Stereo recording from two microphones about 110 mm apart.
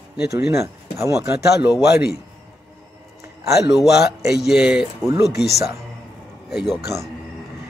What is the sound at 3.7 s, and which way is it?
A man's voice, 5° right (ahead or behind).